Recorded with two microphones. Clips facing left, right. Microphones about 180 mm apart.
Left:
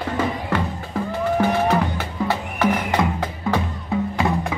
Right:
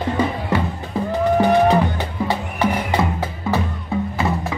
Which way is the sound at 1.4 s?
15° right (ahead or behind).